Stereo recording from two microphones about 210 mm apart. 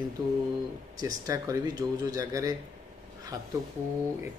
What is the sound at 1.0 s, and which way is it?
Speech, 15° right (ahead or behind).